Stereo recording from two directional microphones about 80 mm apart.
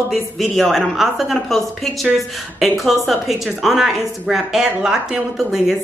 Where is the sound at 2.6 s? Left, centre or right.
Centre.